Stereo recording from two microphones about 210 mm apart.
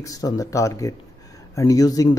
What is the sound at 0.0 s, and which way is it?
A man's voice, 15° left (ahead or behind).